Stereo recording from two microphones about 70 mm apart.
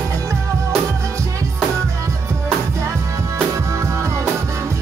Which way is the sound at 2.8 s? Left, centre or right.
Right.